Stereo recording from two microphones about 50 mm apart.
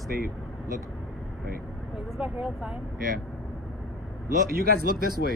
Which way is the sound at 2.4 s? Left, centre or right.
Centre.